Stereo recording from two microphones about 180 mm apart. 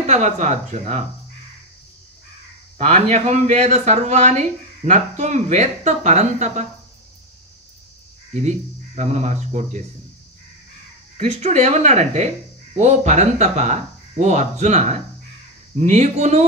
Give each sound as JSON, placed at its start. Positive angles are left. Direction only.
{"t": 0.0, "sound": "speech", "side_deg": -40}
{"t": 2.9, "sound": "speech", "side_deg": -45}
{"t": 8.5, "sound": "speech", "side_deg": -40}
{"t": 11.2, "sound": "speech", "side_deg": -40}